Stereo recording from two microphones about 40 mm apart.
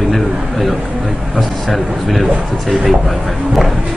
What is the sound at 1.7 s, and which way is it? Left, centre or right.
Speech, centre.